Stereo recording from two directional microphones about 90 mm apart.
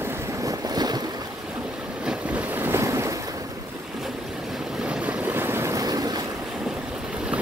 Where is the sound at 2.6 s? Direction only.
30° right (ahead or behind).